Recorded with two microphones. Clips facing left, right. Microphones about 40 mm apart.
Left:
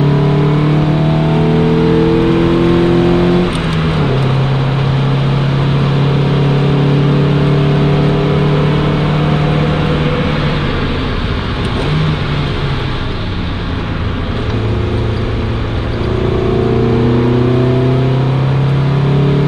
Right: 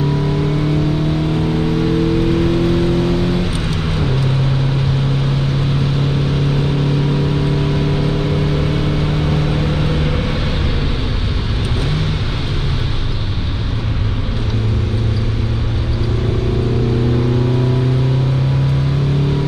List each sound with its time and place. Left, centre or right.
1.3 s vehicle: left
7.2 s vehicle: left
11.9 s vehicle: left